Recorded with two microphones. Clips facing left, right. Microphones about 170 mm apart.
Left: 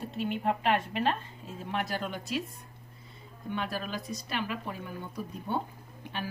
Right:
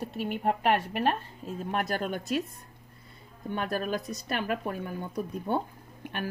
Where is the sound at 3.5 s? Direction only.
45° right (ahead or behind).